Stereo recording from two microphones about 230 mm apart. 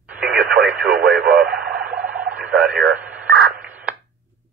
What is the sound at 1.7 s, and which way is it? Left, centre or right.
Radio, centre.